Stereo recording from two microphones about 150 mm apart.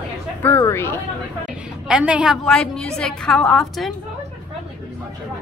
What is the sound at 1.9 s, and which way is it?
Speech, 5° right (ahead or behind).